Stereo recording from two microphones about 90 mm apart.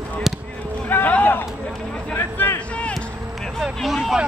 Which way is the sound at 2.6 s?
15° left (ahead or behind).